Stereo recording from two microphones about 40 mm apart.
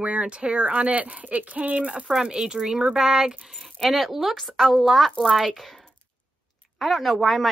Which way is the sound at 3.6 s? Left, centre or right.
Centre.